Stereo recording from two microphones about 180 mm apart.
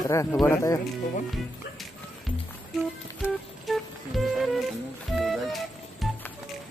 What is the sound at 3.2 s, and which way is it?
Music, centre (ahead or behind).